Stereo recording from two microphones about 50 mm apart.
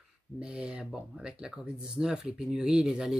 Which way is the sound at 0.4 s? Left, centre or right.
Centre.